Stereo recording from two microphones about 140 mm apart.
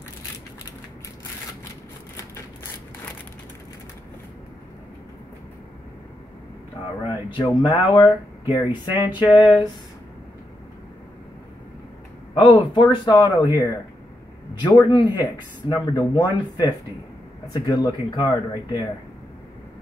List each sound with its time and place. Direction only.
7.0 s speech: 35° left (ahead or behind)
12.4 s speech: 30° left (ahead or behind)
14.6 s speech: 30° left (ahead or behind)